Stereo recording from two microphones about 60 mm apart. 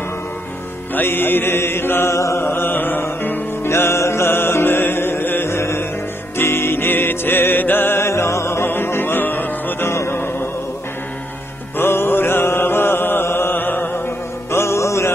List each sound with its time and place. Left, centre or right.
0.9 s mantra: left
2.1 s chant: left
2.4 s music: left
8.0 s music: left
9.8 s music: left
11.7 s mantra: left
14.5 s music: left